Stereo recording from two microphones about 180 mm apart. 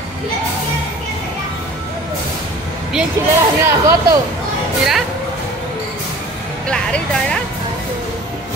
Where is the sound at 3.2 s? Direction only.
15° right (ahead or behind).